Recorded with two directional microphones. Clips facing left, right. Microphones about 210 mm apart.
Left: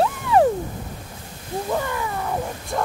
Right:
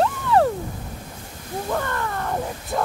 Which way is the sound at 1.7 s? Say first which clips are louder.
Even; 10° left (ahead or behind).